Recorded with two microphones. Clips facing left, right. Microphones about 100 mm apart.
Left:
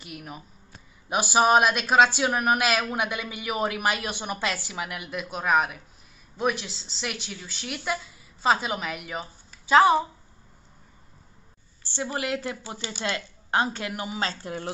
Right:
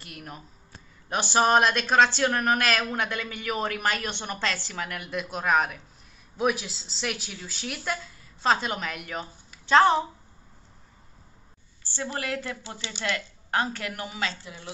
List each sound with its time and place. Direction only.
0.0 s a woman's voice: 5° left (ahead or behind)
11.8 s a woman's voice: 20° left (ahead or behind)
12.8 s speech: 40° left (ahead or behind)
13.1 s a woman's voice: 20° left (ahead or behind)
14.4 s a woman's voice: 50° left (ahead or behind)